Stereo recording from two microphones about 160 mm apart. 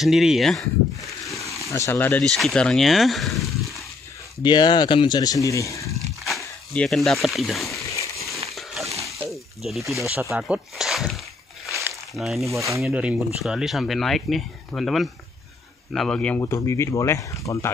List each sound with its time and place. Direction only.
0.0 s speech: centre (ahead or behind)
1.7 s speech: 15° left (ahead or behind); by 3.8 s centre (ahead or behind)
4.4 s speech: 30° left (ahead or behind)
6.2 s speech: 5° left (ahead or behind)
7.7 s a sound: 20° left (ahead or behind)
8.5 s a sound: centre (ahead or behind)
9.3 s snake: centre (ahead or behind)
10.3 s speech: 5° right (ahead or behind)
11.7 s a sound: 20° right (ahead or behind)
12.1 s speech: centre (ahead or behind)
12.4 s speech: 20° right (ahead or behind)
12.8 s speech: 5° right (ahead or behind)
16.3 s speech: 20° left (ahead or behind)